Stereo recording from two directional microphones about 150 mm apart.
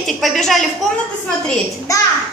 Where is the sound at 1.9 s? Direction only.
20° left (ahead or behind).